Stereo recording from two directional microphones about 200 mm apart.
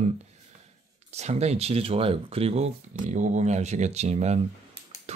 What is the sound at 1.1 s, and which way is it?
Speech, 35° right (ahead or behind).